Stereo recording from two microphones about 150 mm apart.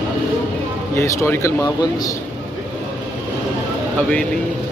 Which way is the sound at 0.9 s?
15° left (ahead or behind).